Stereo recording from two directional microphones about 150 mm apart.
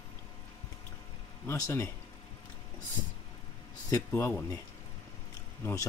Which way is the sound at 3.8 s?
20° left (ahead or behind).